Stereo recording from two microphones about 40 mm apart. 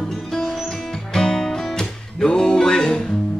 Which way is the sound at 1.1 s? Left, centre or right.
Centre.